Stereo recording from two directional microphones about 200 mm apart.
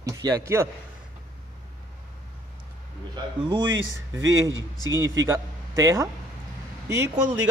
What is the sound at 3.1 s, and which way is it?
Speech, 20° right (ahead or behind).